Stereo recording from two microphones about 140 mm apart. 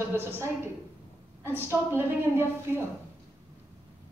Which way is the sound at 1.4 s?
15° right (ahead or behind).